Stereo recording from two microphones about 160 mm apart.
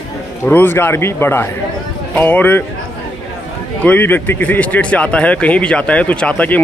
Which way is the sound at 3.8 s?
10° left (ahead or behind).